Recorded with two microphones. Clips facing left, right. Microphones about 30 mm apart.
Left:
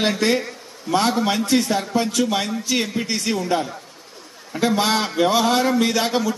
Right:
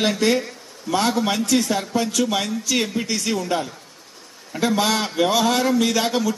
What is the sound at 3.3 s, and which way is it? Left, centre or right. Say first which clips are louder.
A man's voice: left 1 dB; centre.